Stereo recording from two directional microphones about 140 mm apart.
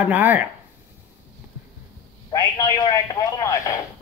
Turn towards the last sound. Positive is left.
turn(degrees=20)  # may be behind; listen again after turning